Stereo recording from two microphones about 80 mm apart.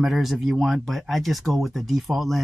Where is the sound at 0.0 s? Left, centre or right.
Centre.